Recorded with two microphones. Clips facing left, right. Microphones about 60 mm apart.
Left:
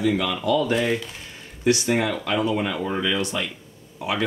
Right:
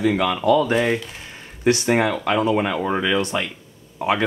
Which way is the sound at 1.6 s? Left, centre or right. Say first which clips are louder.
Right 3 dB; right.